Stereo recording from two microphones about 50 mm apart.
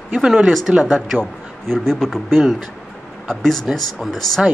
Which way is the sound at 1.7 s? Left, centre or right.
Centre.